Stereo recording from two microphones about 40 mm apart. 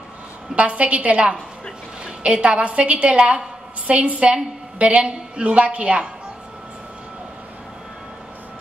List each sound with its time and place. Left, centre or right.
0.6 s a woman's voice: right